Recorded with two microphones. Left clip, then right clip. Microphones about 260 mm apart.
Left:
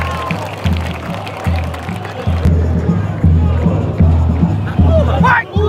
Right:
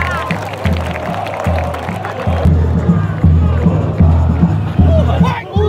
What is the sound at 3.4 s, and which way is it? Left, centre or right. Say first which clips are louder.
Music: right 1 dB; centre.